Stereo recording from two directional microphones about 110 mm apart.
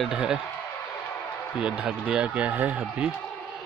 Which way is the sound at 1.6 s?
10° right (ahead or behind).